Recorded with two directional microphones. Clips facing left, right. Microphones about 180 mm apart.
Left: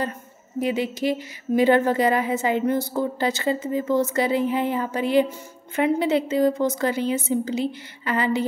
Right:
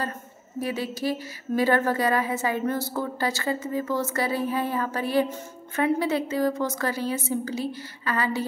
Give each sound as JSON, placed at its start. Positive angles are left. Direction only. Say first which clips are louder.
{"t": 0.6, "sound": "a woman's voice", "louder": "left 5 dB", "side_deg": 20}